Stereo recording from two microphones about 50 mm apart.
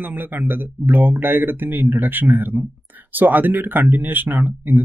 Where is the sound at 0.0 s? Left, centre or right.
Right.